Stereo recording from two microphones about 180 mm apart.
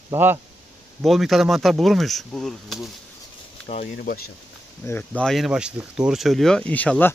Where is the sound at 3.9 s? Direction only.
60° left (ahead or behind).